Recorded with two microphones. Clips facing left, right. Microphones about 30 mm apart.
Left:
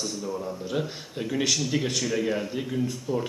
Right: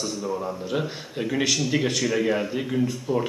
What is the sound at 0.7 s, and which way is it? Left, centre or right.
Speech, centre.